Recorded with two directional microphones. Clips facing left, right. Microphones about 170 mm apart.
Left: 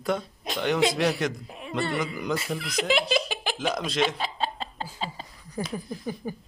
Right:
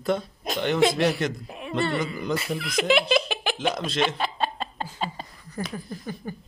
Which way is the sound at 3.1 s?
65° right (ahead or behind).